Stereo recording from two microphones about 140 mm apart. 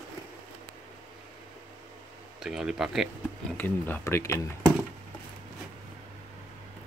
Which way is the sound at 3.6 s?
15° left (ahead or behind).